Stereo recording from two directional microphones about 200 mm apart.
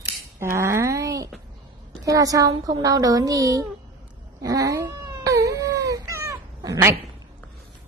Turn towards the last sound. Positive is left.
turn(degrees=-15)  # may be behind; listen again after turning